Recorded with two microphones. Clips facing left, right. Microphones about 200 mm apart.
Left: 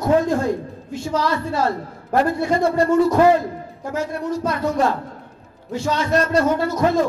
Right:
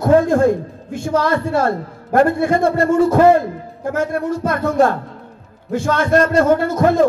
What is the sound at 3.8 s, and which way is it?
A man's voice, 55° right (ahead or behind).